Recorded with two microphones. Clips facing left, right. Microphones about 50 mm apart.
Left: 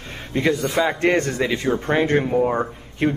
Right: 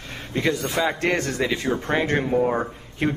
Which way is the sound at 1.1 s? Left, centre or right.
Centre.